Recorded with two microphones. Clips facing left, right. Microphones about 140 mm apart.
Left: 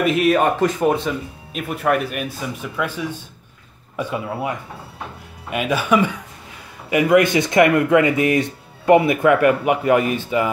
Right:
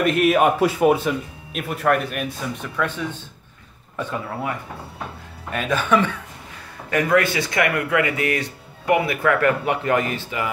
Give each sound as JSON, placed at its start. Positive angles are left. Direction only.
{"t": 0.0, "sound": "speech", "side_deg": 0}